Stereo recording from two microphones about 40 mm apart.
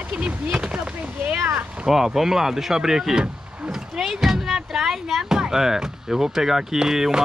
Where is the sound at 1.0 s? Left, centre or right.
Right.